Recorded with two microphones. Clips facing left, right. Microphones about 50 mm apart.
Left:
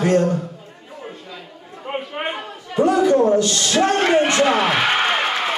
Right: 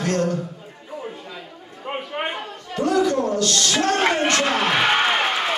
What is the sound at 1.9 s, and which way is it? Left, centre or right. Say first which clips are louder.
Chatter: left 2 dB; centre.